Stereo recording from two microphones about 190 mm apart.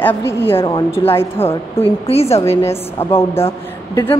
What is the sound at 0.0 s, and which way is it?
A woman's voice, 10° left (ahead or behind).